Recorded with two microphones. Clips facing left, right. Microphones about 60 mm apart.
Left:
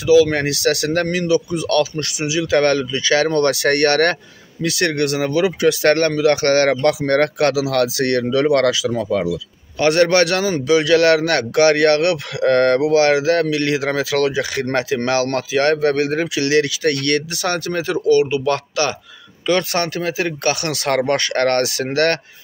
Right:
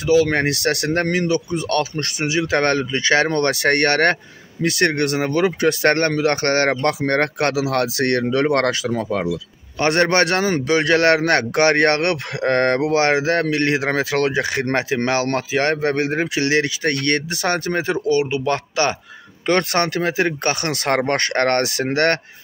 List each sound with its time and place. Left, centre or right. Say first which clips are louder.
0.0 s a man's voice: left 3 dB; right
19.4 s a man's voice: even; right